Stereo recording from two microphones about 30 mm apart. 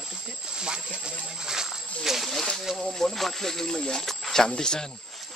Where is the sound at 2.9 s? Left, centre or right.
Centre.